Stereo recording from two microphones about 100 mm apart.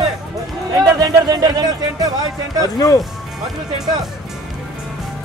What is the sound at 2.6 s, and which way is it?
Speech, 40° left (ahead or behind).